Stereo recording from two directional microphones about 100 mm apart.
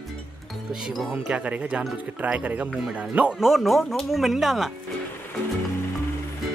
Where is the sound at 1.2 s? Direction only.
10° right (ahead or behind).